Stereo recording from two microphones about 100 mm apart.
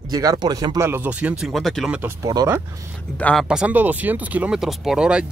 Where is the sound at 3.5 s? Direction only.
10° right (ahead or behind).